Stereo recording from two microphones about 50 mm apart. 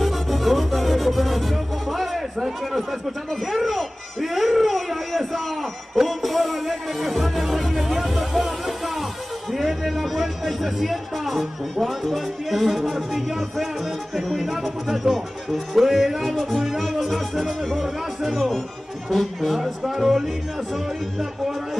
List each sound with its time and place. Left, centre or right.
0.0 s music: centre
3.4 s a sound: centre
5.9 s music: centre
9.5 s speech: centre